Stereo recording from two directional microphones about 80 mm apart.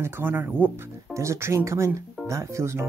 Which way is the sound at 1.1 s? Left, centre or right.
Right.